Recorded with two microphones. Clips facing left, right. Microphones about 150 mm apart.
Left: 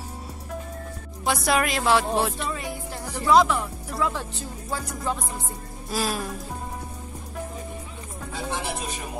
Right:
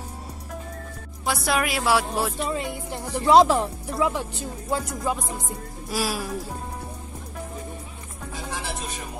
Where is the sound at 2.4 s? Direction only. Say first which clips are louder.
Right 3 dB; 25° right (ahead or behind).